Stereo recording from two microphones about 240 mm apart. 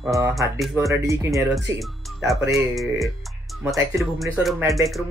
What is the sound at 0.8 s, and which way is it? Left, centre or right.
Speech, centre.